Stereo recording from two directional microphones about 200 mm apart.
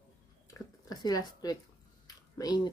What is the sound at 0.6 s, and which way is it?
Speech, 20° left (ahead or behind).